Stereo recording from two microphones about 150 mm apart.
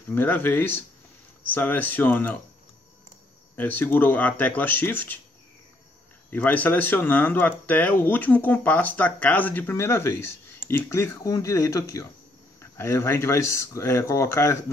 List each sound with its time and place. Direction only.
0.1 s speech: 15° left (ahead or behind)
3.5 s speech: 10° left (ahead or behind)
6.3 s speech: 10° left (ahead or behind)